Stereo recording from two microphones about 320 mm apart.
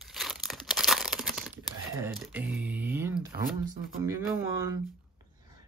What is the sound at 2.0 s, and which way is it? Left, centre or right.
Speech, centre.